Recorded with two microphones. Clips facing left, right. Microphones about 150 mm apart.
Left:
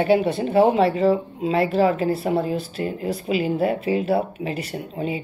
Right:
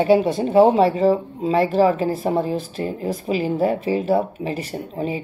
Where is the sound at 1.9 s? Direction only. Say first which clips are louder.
Right 1 dB; 35° right (ahead or behind).